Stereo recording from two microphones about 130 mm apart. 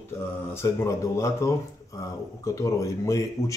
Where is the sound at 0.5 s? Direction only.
20° left (ahead or behind).